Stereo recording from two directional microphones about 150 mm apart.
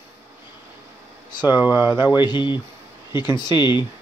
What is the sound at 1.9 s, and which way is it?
Speech, 30° left (ahead or behind).